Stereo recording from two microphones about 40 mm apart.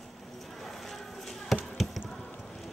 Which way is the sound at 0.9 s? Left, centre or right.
Centre.